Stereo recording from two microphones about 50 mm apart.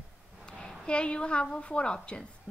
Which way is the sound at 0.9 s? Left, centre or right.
Left.